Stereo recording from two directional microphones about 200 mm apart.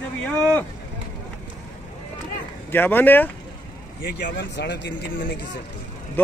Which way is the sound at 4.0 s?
60° left (ahead or behind).